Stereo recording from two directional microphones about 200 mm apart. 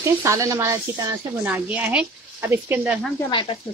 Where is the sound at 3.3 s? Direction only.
25° left (ahead or behind).